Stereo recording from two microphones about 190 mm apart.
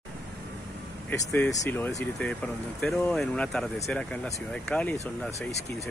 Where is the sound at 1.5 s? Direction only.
15° left (ahead or behind).